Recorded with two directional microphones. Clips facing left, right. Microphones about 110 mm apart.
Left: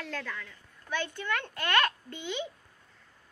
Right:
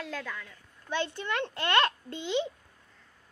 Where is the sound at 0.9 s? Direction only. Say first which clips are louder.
Right 2 dB; 25° right (ahead or behind).